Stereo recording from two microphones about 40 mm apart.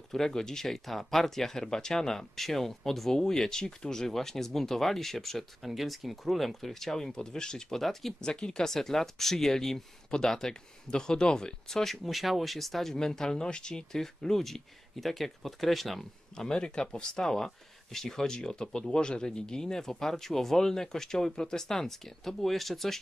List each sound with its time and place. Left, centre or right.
0.1 s speech: centre
5.6 s speech: centre
7.8 s speech: centre
8.2 s speech: centre
11.8 s speech: centre
12.9 s speech: centre
16.3 s speech: left; by 22.9 s centre